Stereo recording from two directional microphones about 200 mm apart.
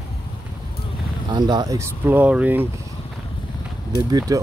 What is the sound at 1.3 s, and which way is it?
Speech, 20° right (ahead or behind).